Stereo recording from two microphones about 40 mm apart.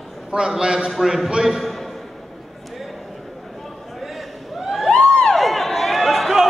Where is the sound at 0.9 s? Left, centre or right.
Centre.